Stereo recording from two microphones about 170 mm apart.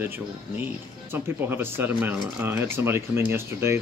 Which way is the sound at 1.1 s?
10° right (ahead or behind).